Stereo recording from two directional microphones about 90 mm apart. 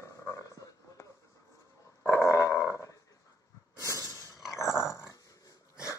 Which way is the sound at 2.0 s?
30° left (ahead or behind).